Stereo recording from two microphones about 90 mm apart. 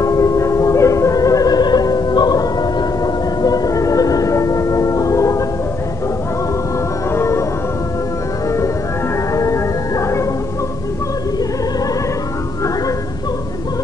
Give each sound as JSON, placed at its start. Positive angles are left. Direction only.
{"t": 0.0, "sound": "music", "side_deg": 40}
{"t": 7.1, "sound": "music", "side_deg": 30}
{"t": 9.3, "sound": "music", "side_deg": 35}